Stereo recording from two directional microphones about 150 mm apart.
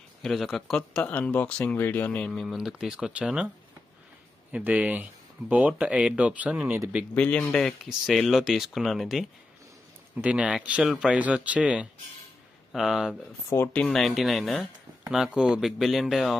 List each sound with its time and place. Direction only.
0.2 s speech: centre (ahead or behind)
4.5 s speech: 10° right (ahead or behind)
7.2 s speech: 10° left (ahead or behind)
13.5 s speech: 15° left (ahead or behind)
13.8 s speech: centre (ahead or behind)